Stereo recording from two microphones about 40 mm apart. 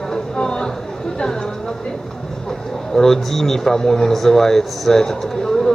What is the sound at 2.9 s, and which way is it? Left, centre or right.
Speech, centre.